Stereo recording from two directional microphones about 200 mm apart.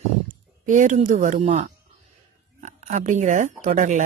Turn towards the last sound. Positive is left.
turn(degrees=-40)  # may be behind; listen again after turning